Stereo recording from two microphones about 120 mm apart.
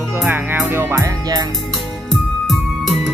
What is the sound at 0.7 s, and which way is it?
Music, 20° right (ahead or behind).